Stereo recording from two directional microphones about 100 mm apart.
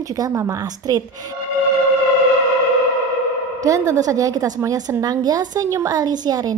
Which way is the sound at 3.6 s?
35° right (ahead or behind).